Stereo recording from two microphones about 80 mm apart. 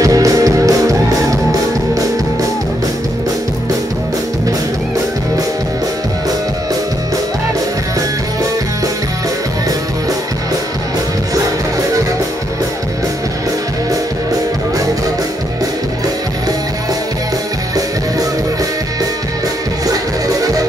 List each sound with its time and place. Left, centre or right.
0.0 s music: right
19.9 s music: right